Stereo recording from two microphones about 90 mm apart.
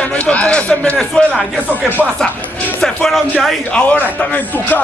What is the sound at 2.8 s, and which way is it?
Speech, 10° left (ahead or behind).